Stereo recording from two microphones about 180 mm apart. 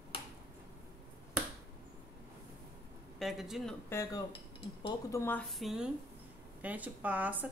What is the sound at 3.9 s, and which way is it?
Speech, 15° left (ahead or behind).